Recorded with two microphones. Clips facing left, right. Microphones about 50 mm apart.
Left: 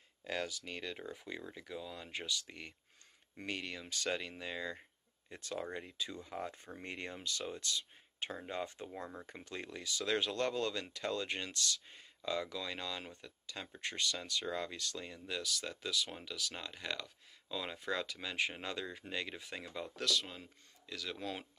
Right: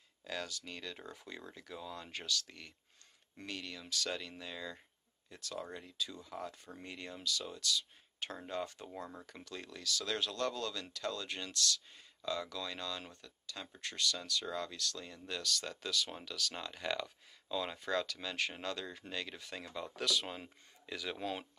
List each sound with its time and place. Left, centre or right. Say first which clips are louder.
0.2 s speech: left 3 dB; left
3.4 s speech: left 3 dB; left
8.5 s speech: right 3 dB; centre
9.2 s speech: left 2 dB; left; by 19.9 s centre
20.0 s speech: right 1 dB; centre
20.3 s speech: right 3 dB; right
21.0 s speech: right 2 dB; centre